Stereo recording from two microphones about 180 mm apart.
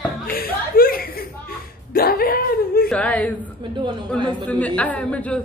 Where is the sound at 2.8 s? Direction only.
5° left (ahead or behind).